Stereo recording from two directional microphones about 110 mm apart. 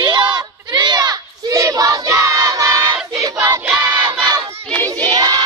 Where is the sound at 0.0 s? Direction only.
45° right (ahead or behind).